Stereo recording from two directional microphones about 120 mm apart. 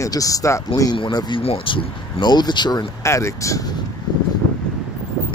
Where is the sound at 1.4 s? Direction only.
45° left (ahead or behind).